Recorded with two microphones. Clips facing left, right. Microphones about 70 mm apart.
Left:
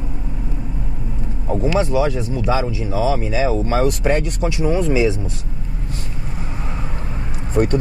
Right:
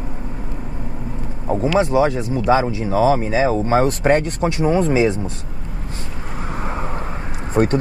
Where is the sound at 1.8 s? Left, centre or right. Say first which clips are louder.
Right 4 dB; right.